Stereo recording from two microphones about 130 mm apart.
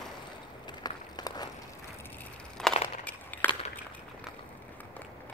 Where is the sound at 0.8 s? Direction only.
30° left (ahead or behind).